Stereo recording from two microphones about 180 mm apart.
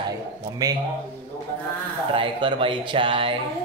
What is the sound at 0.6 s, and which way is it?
Speech, 20° right (ahead or behind).